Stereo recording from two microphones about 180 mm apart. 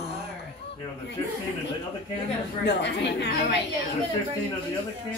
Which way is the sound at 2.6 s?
75° left (ahead or behind).